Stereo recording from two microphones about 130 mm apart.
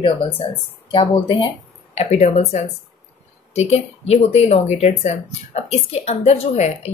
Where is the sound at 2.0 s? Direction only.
60° left (ahead or behind).